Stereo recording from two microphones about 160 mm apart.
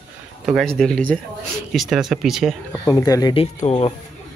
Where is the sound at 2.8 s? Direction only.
20° left (ahead or behind).